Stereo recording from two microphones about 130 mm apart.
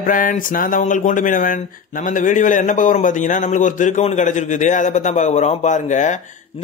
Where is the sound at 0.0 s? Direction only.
90° left.